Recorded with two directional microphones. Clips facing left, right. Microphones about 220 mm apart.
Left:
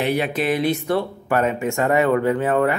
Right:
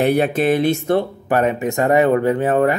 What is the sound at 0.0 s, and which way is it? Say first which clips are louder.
Speech: right 5 dB; 50° right (ahead or behind).